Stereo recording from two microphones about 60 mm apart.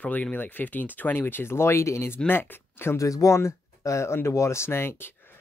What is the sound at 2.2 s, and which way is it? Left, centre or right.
Speech, left.